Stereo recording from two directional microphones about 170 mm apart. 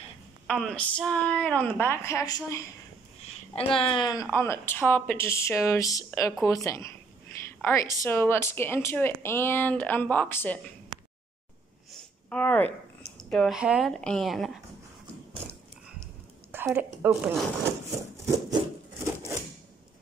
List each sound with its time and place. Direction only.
0.5 s speech: 5° left (ahead or behind); by 2.6 s 20° left (ahead or behind)
3.5 s speech: 30° left (ahead or behind)
8.0 s speech: 15° left (ahead or behind)
12.3 s speech: 10° left (ahead or behind)
16.5 s a woman's voice: 10° right (ahead or behind)
18.2 s rub: 20° right (ahead or behind)